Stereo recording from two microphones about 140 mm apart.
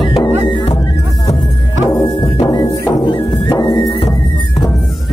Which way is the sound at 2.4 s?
30° left (ahead or behind).